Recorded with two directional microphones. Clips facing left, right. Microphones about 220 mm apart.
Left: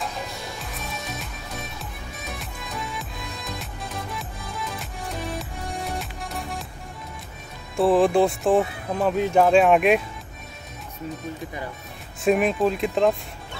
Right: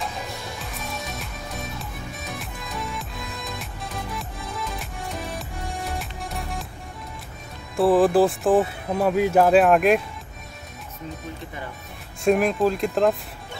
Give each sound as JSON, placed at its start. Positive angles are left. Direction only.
{"t": 0.7, "sound": "music", "side_deg": 0}
{"t": 7.7, "sound": "speech", "side_deg": 0}
{"t": 12.3, "sound": "speech", "side_deg": 0}